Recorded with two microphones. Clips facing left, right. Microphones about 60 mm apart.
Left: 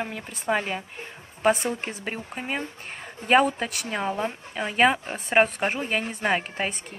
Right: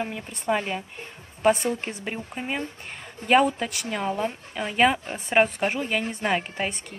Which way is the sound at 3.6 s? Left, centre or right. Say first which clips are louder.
Even; centre.